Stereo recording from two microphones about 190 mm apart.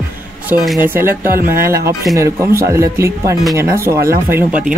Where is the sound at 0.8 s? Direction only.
10° right (ahead or behind).